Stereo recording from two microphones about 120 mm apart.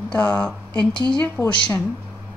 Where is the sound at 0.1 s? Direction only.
15° left (ahead or behind).